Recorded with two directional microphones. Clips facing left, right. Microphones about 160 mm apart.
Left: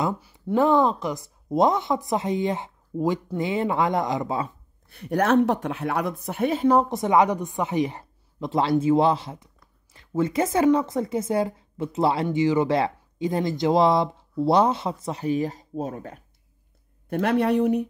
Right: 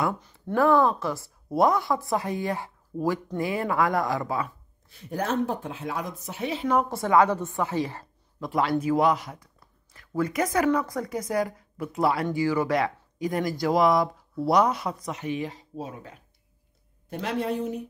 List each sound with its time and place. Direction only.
0.0 s speech: 10° left (ahead or behind)
0.6 s speech: 20° left (ahead or behind)
4.8 s speech: 65° left (ahead or behind); by 6.8 s 45° left (ahead or behind)
6.8 s speech: 20° left (ahead or behind); by 17.8 s 65° left (ahead or behind)